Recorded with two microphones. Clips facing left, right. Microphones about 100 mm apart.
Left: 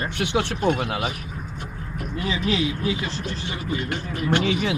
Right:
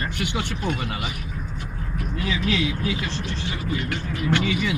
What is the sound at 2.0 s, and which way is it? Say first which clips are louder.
Speech: even; 40° left (ahead or behind).